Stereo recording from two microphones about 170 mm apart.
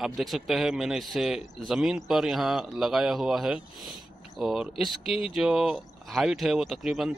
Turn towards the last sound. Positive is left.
turn(degrees=0)  # may be behind; listen again after turning